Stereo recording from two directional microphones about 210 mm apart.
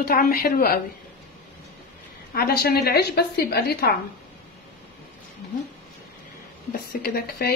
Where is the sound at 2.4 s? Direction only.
45° left (ahead or behind).